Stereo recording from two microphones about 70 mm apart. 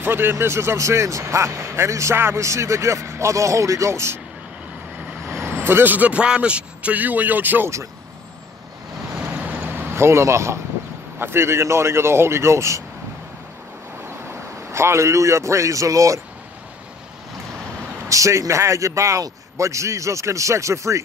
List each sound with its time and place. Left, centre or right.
0.0 s speech: right
5.2 s speech: right
9.2 s vehicle: right
11.1 s speech: right
14.3 s a man's voice: right
18.0 s speech: right